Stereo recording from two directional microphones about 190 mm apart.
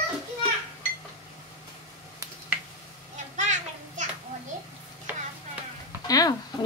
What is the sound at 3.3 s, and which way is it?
Children playing, 40° right (ahead or behind).